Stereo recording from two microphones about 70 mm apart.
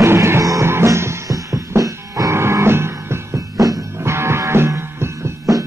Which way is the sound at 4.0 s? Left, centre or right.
Right.